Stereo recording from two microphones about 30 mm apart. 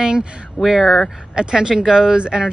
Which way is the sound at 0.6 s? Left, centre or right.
Centre.